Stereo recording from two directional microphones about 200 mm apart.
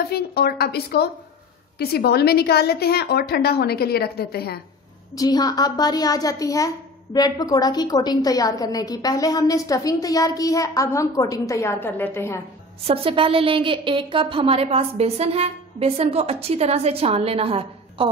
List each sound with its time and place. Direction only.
0.1 s a woman's voice: 50° left (ahead or behind)
5.1 s a woman's voice: 20° left (ahead or behind)
12.8 s a woman's voice: 30° right (ahead or behind)